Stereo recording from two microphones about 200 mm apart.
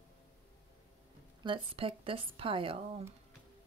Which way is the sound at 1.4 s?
25° right (ahead or behind).